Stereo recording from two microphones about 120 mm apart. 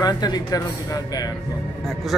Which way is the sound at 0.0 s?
35° left (ahead or behind).